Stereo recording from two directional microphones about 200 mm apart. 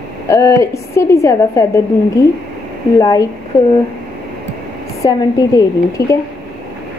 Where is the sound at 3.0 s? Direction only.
20° left (ahead or behind).